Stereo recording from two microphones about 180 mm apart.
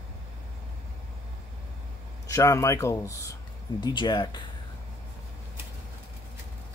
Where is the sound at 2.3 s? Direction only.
15° left (ahead or behind).